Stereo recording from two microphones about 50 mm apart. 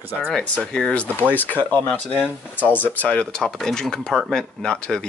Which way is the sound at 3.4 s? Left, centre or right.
Centre.